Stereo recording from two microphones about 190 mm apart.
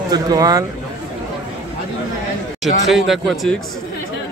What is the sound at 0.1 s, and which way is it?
Speech, 20° right (ahead or behind).